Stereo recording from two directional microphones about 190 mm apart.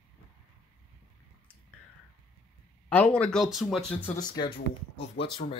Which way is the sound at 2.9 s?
5° left (ahead or behind).